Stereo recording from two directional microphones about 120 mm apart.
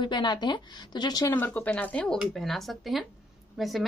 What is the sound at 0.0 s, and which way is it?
Speech, 40° left (ahead or behind).